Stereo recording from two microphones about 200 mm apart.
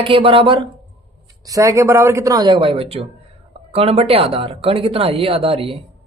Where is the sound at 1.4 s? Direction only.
15° right (ahead or behind).